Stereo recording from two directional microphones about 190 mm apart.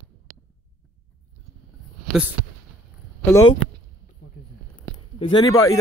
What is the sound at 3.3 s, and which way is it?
Speech, 15° left (ahead or behind).